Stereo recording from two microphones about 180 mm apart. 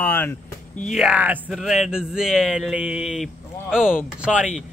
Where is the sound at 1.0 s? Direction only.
5° right (ahead or behind).